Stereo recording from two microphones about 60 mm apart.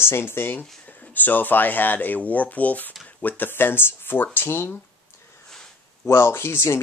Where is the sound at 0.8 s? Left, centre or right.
Left.